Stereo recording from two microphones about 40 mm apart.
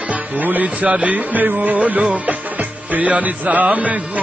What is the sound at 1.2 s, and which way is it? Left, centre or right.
Music, right.